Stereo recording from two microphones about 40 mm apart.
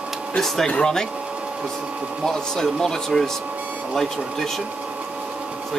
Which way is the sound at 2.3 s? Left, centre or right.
Centre.